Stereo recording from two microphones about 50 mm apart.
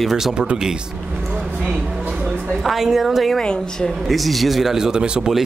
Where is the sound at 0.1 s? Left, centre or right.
Centre.